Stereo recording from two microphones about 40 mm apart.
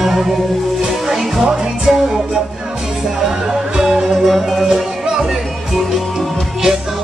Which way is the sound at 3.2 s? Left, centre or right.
Centre.